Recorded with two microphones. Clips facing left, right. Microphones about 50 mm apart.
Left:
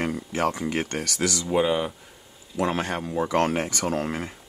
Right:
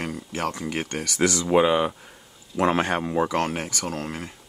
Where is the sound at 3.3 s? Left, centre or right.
Centre.